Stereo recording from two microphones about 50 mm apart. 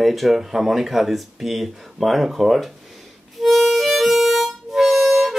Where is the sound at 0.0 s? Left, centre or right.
Centre.